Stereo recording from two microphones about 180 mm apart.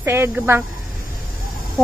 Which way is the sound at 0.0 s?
15° right (ahead or behind).